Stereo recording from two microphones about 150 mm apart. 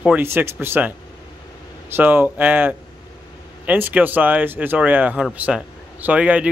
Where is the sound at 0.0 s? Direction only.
15° right (ahead or behind).